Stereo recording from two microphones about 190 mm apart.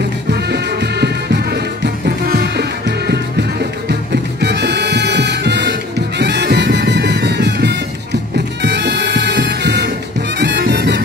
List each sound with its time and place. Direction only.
0.3 s music: 60° right (ahead or behind)
4.1 s music: 60° right (ahead or behind)
8.6 s bagpipes: 65° right (ahead or behind)
10.4 s music: 60° right (ahead or behind)